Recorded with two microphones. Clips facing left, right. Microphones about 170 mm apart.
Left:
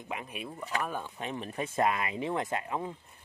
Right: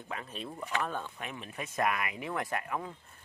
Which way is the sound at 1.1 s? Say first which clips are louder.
Left 5 dB; 25° left (ahead or behind).